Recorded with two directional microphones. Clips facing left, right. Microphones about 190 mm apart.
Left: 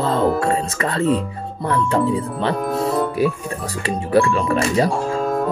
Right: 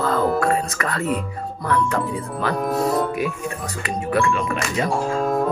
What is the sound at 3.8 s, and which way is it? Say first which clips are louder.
Speech: left 4 dB; 30° left (ahead or behind).